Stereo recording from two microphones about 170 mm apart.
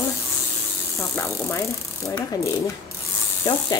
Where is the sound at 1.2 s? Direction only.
15° left (ahead or behind).